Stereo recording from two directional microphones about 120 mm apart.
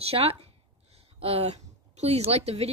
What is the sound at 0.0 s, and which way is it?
Speech, 55° right (ahead or behind).